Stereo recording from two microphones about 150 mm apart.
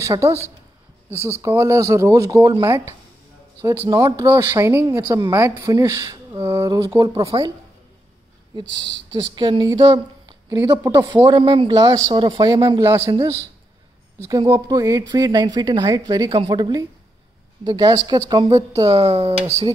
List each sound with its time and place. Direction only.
0.0 s speech: 20° right (ahead or behind)
9.1 s speech: 30° right (ahead or behind)
11.2 s speech: 35° right (ahead or behind)
12.8 s a man's voice: 20° right (ahead or behind)
14.5 s speech: 20° right (ahead or behind)
18.9 s speech: 40° right (ahead or behind)